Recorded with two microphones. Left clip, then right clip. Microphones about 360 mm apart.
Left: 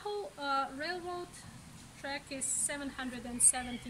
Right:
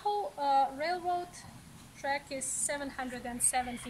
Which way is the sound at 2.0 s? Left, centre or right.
Centre.